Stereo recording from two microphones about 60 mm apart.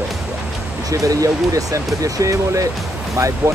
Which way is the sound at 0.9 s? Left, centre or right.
Right.